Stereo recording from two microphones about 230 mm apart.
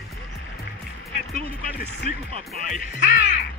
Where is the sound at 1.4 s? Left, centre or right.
Left.